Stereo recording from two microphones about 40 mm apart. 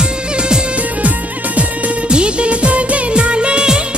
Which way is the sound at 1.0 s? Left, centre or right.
Right.